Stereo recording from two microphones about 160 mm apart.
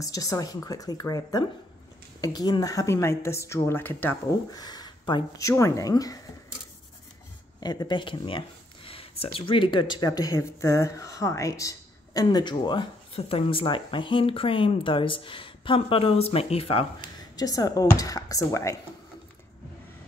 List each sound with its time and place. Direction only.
0.0 s a woman's voice: 20° left (ahead or behind)
4.6 s a woman's voice: 25° left (ahead or behind)
7.6 s speech: 25° left (ahead or behind)
17.4 s a woman's voice: 25° left (ahead or behind)